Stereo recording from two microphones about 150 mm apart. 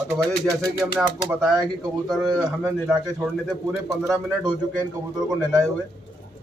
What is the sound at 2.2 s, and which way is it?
Speech, 20° right (ahead or behind).